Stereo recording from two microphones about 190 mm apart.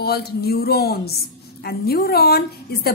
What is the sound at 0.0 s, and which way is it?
A woman's voice, 55° left (ahead or behind).